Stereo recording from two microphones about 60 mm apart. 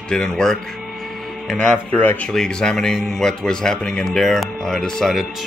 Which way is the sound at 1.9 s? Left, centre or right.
Left.